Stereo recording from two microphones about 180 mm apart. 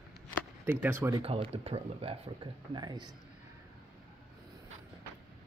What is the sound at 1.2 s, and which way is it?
Speech, 30° right (ahead or behind).